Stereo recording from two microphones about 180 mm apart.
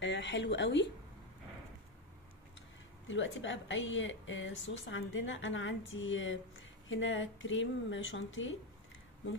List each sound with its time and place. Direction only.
0.0 s speech: 90° left
3.1 s a woman's voice: 90° left